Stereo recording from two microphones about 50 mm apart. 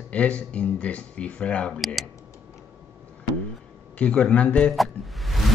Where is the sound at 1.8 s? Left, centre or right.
Centre.